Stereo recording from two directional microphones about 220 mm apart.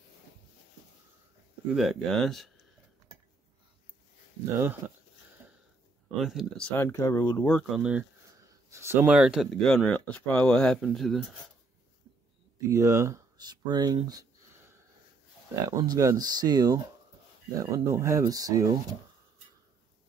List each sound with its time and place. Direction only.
1.7 s speech: centre (ahead or behind)
6.1 s speech: centre (ahead or behind)
12.6 s speech: 15° right (ahead or behind)